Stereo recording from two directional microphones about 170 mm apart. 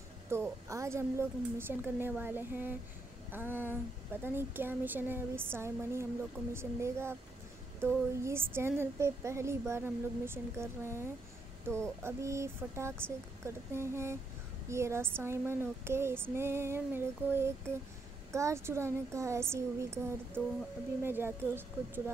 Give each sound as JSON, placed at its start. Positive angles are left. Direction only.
{"t": 0.3, "sound": "speech", "side_deg": -15}